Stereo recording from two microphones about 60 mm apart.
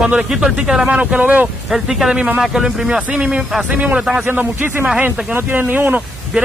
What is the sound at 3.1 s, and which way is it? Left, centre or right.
Speech, right.